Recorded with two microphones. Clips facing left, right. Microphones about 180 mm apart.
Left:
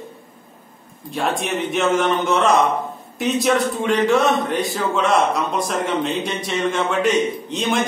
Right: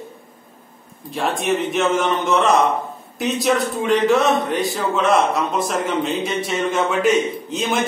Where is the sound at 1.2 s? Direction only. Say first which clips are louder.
Right 2 dB; centre (ahead or behind).